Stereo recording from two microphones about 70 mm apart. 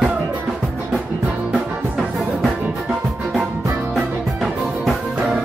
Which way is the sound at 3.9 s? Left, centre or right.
Centre.